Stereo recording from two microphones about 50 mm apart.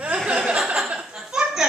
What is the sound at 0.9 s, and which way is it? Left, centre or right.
Chuckle, right.